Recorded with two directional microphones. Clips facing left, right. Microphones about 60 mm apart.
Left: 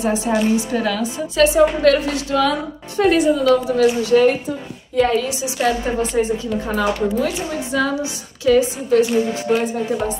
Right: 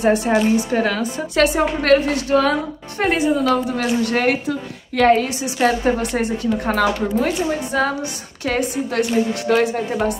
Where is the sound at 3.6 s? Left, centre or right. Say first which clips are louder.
Left 4 dB; right.